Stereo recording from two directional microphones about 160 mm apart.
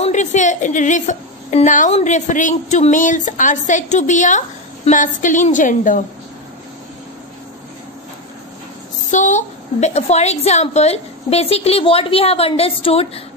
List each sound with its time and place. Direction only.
0.0 s a woman's voice: 50° left (ahead or behind)
9.1 s a woman's voice: 50° left (ahead or behind)